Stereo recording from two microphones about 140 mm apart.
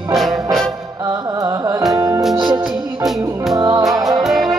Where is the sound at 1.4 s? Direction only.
25° right (ahead or behind).